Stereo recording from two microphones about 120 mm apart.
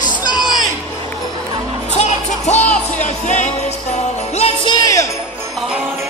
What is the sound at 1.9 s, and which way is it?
Music, 70° left (ahead or behind).